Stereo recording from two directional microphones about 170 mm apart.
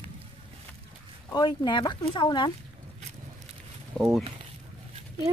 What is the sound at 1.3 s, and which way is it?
Speech, 25° left (ahead or behind).